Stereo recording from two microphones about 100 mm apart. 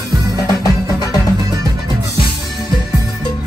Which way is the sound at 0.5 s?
40° left (ahead or behind).